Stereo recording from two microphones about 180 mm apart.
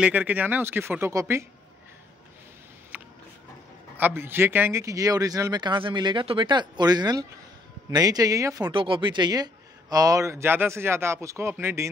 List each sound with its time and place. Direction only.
0.0 s a man's voice: 10° right (ahead or behind)
2.9 s a sound: 10° right (ahead or behind)
3.9 s speech: 10° right (ahead or behind)
8.7 s a man's voice: 30° right (ahead or behind)